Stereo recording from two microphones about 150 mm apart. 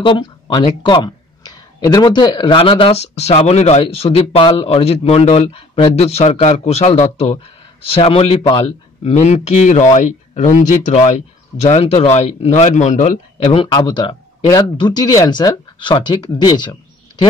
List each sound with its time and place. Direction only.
0.0 s speech: 30° left (ahead or behind)
9.1 s speech: 50° left (ahead or behind)
13.4 s speech: 35° left (ahead or behind)